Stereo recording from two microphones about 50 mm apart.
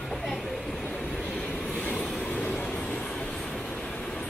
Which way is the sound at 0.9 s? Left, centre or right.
Centre.